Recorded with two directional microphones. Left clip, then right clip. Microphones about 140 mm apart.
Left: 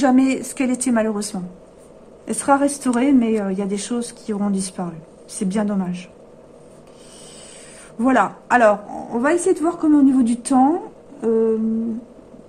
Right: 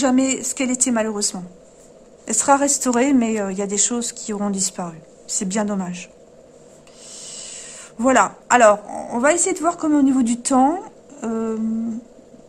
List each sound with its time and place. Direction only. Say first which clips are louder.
0.0 s a woman's voice: left 2 dB; 30° right (ahead or behind)
8.0 s a woman's voice: right 1 dB; 35° right (ahead or behind); by 11.5 s 60° right (ahead or behind)